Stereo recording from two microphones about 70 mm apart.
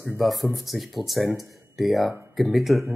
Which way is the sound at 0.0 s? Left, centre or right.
Centre.